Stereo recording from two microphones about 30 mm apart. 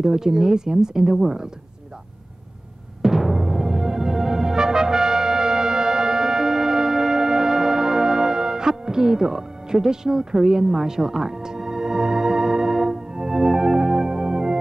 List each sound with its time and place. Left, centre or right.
0.0 s speech: centre
3.0 s timpani: centre
11.1 s organ: centre